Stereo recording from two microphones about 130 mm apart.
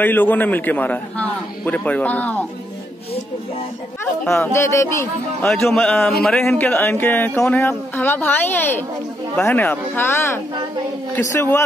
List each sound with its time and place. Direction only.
0.0 s a man's voice: 15° left (ahead or behind)
4.3 s speech: 20° left (ahead or behind)
5.7 s a man's voice: 5° left (ahead or behind)